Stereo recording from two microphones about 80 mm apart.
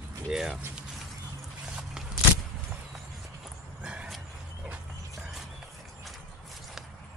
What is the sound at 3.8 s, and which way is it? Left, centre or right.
Horse, centre.